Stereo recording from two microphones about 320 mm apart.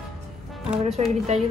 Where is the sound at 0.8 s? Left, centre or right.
Centre.